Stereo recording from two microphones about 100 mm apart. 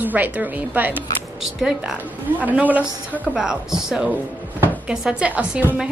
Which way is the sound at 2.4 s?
15° right (ahead or behind).